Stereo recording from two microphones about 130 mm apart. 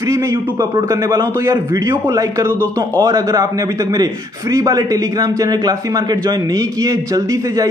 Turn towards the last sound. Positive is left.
turn(degrees=-25)  # may be behind; listen again after turning